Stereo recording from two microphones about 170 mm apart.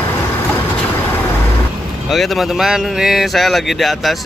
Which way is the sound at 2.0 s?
Centre (ahead or behind).